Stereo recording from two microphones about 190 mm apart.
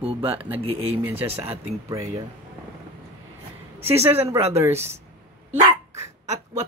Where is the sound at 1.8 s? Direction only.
15° right (ahead or behind).